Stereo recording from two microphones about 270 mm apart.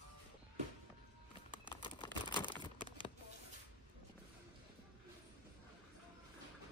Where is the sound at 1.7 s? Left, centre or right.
Centre.